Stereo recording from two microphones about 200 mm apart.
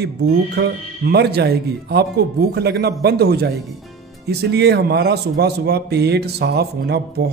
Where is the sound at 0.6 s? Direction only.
55° right (ahead or behind).